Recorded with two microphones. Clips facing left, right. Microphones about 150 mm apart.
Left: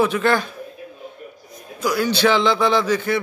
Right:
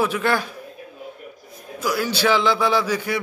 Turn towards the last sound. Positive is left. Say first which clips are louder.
# left 3 dB
turn(degrees=-10)  # may be behind; listen again after turning